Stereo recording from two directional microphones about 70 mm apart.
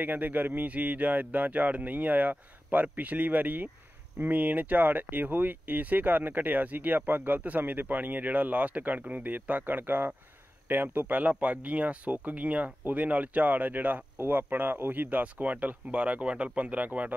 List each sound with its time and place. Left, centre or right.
0.0 s speech: right